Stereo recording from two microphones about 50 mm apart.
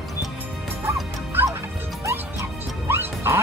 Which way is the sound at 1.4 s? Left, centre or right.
Right.